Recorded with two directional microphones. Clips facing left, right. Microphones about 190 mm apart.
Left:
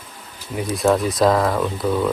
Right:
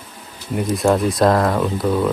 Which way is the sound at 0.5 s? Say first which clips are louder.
Right 1 dB; centre (ahead or behind).